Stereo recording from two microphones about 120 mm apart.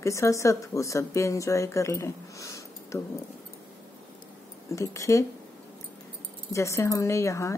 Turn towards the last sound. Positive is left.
turn(degrees=25)  # may be behind; listen again after turning